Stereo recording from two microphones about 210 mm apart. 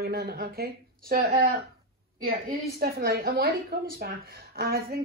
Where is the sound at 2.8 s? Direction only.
50° right (ahead or behind).